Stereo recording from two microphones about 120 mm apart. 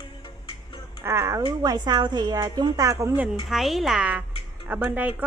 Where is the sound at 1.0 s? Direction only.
25° right (ahead or behind).